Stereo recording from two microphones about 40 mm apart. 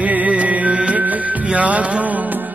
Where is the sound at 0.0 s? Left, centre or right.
Right.